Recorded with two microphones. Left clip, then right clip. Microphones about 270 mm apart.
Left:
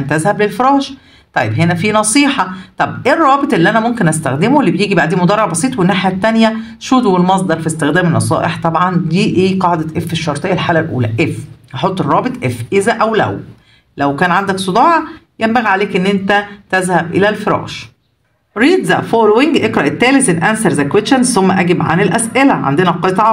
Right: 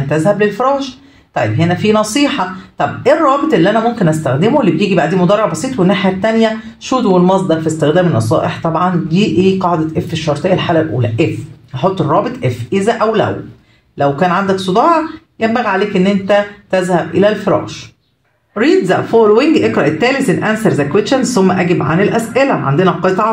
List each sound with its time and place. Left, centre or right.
0.1 s speech: left